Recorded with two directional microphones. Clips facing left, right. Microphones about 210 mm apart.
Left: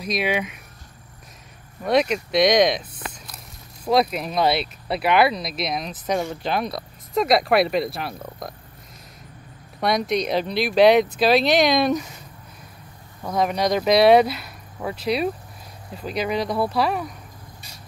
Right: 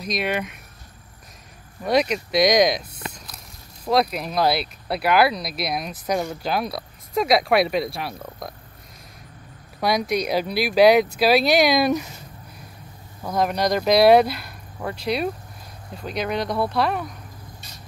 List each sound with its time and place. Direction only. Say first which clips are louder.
0.0 s speech: left 1 dB; 5° left (ahead or behind)
1.9 s speech: left 1 dB; centre (ahead or behind)
9.8 s speech: even; centre (ahead or behind)
13.2 s speech: even; centre (ahead or behind)